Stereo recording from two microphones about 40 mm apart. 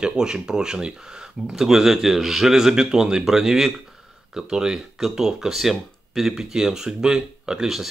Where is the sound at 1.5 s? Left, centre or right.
Centre.